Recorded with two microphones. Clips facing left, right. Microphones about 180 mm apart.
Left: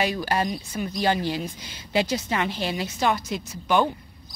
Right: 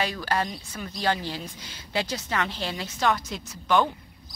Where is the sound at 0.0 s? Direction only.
15° left (ahead or behind).